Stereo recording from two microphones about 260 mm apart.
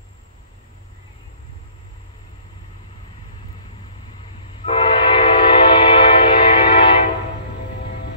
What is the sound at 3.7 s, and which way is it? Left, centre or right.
Train, centre.